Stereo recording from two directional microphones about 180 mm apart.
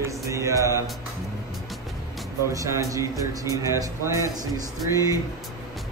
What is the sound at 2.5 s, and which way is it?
A man's voice, 15° right (ahead or behind).